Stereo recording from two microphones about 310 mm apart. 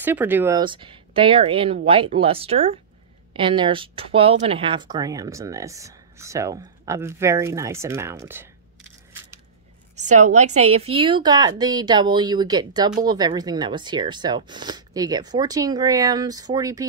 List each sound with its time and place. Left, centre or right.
0.0 s a woman's voice: centre
9.9 s a woman's voice: right